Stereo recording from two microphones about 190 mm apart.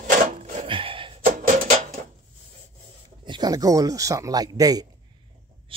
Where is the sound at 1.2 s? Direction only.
45° right (ahead or behind).